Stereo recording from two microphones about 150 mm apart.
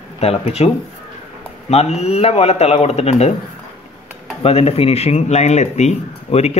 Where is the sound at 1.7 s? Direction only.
45° left (ahead or behind).